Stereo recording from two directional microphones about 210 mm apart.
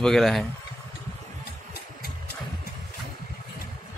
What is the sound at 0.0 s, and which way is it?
Speech, centre (ahead or behind).